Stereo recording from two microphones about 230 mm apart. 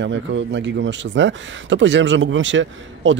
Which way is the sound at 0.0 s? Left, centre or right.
Right.